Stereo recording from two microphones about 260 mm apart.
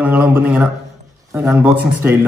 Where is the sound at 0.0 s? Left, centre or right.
Centre.